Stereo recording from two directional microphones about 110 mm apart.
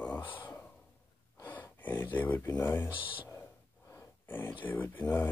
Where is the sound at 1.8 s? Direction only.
15° left (ahead or behind).